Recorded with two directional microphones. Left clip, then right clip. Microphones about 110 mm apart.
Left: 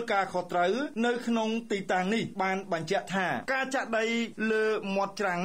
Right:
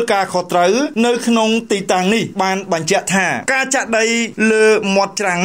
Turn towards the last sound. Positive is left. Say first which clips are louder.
# right 14 dB
turn(degrees=-35)  # may be behind; listen again after turning